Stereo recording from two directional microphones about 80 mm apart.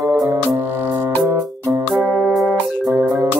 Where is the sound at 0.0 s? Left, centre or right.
Centre.